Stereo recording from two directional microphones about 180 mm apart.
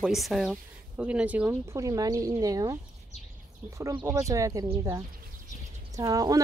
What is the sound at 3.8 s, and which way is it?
Speech, 15° right (ahead or behind).